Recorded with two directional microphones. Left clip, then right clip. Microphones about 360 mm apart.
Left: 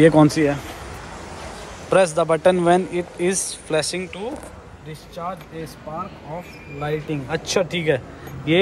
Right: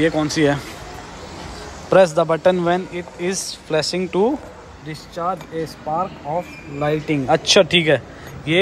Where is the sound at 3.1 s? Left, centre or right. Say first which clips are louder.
Left 1 dB; right.